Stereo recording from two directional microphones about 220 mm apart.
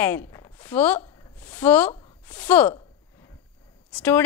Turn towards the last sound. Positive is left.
turn(degrees=5)  # may be behind; listen again after turning